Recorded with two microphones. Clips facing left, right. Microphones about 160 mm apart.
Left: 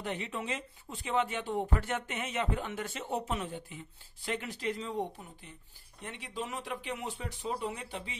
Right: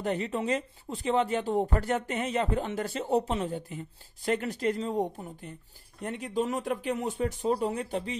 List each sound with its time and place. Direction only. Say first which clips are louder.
0.0 s speech: right 7 dB; 40° right (ahead or behind)
6.0 s speech: right 10 dB; 45° right (ahead or behind)